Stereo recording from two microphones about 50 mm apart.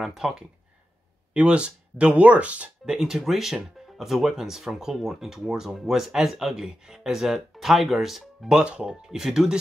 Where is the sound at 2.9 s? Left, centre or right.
Centre.